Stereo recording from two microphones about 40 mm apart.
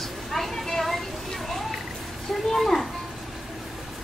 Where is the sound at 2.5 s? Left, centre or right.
Centre.